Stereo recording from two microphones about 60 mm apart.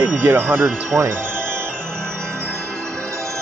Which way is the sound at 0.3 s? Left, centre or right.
Right.